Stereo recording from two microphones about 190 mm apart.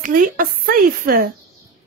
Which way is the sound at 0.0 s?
50° right (ahead or behind).